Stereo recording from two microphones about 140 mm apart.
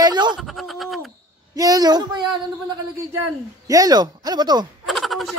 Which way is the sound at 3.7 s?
25° right (ahead or behind).